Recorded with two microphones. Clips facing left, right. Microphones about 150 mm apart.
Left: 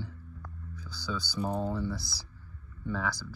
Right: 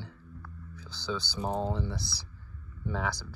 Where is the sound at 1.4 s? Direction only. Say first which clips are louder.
Left 1 dB; 25° right (ahead or behind).